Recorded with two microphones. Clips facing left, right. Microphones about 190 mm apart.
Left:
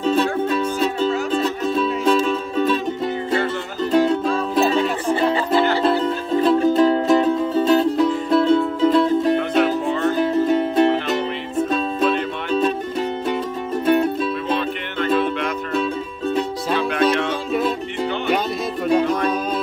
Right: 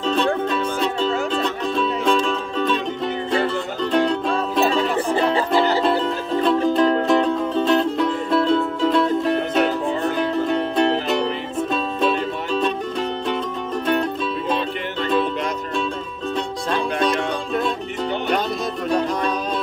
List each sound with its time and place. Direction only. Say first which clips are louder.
0.0 s music: left 1 dB; 5° left (ahead or behind)
3.8 s music: left 3 dB; 5° left (ahead or behind)
13.8 s music: left 5 dB; 5° left (ahead or behind)
16.3 s music: left 1 dB; 5° left (ahead or behind)
18.9 s music: left 4 dB; centre (ahead or behind)